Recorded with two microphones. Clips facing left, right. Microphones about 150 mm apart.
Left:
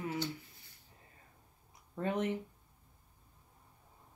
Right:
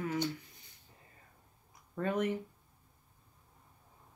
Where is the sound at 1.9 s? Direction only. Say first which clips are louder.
Right 2 dB; 20° left (ahead or behind).